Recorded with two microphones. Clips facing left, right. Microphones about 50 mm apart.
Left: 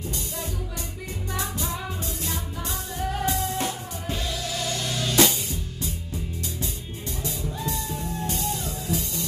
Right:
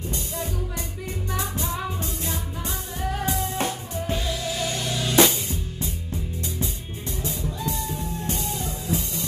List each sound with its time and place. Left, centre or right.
1.3 s music: right
3.3 s music: right
4.1 s music: right
5.1 s drum kit: right
7.2 s music: right